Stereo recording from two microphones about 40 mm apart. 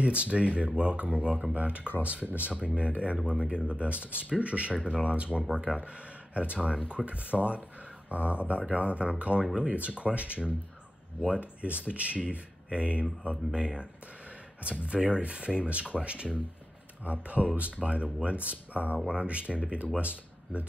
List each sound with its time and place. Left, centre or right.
0.0 s speech: right
2.5 s speech: right
4.7 s speech: right
14.9 s speech: right